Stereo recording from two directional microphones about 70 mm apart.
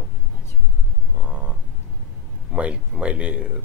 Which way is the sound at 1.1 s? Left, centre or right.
Centre.